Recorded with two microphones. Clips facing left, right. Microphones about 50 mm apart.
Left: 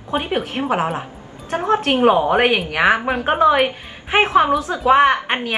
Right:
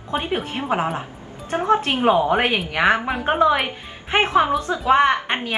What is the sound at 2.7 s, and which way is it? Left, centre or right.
A woman's voice, centre.